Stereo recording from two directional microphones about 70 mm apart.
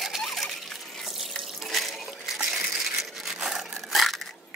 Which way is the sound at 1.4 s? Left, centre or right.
Centre.